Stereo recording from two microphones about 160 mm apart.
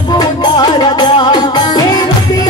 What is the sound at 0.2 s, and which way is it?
Music, 25° left (ahead or behind).